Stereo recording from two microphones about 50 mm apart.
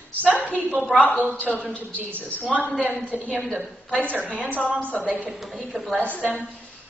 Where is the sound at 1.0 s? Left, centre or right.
Left.